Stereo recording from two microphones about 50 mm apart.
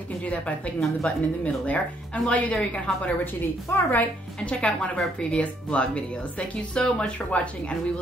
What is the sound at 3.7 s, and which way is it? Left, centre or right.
Speech, left.